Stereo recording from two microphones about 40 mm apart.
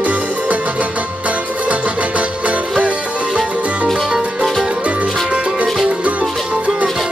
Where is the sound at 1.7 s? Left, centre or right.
Right.